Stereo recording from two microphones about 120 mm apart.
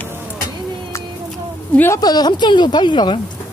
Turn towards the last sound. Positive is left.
turn(degrees=40)  # may be behind; listen again after turning